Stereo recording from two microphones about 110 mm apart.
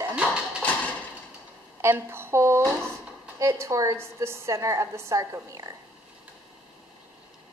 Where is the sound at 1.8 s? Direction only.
20° right (ahead or behind).